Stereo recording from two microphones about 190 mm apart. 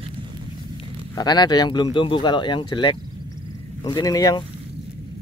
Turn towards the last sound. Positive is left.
turn(degrees=20)  # may be behind; listen again after turning